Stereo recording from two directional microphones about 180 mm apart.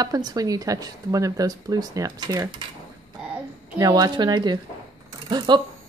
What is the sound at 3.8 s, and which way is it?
Speech, 20° right (ahead or behind).